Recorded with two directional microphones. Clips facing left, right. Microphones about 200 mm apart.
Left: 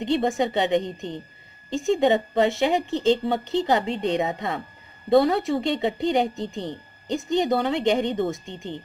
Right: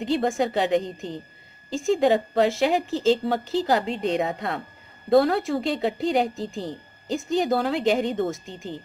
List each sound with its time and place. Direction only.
0.0 s speech: centre (ahead or behind)